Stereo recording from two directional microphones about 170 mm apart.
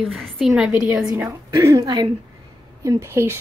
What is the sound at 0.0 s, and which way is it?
A woman's voice, centre (ahead or behind).